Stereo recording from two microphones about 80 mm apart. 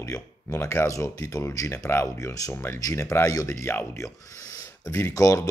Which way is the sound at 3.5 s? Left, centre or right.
Left.